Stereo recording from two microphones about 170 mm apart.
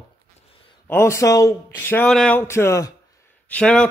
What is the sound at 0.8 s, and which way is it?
Speech, 15° left (ahead or behind).